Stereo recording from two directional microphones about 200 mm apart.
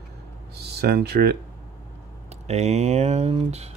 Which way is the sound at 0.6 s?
55° right (ahead or behind).